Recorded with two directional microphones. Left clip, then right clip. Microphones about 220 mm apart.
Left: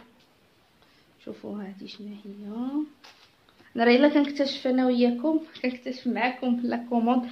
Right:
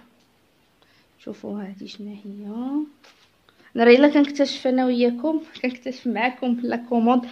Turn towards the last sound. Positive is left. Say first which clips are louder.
# right 5 dB
turn(degrees=-50)  # may be behind; listen again after turning